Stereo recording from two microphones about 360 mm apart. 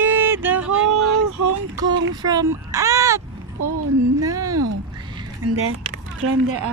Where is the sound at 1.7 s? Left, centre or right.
Centre.